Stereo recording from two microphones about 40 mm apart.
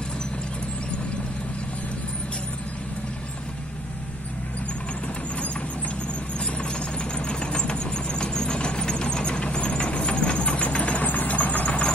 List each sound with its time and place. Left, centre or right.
6.4 s engine: left